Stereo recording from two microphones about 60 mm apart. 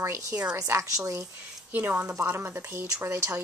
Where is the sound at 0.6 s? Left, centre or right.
Right.